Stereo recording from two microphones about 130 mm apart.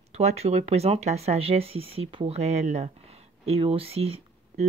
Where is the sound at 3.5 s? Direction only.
45° right (ahead or behind).